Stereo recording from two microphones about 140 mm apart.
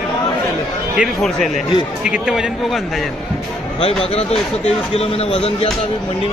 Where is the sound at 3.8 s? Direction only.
45° left (ahead or behind).